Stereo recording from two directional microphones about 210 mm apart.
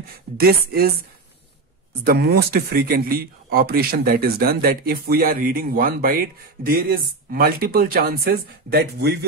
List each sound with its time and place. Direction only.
0.4 s speech: 45° right (ahead or behind)
2.0 s speech: 50° right (ahead or behind)